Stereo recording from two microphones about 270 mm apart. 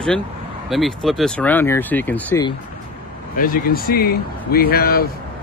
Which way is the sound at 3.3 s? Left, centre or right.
Left.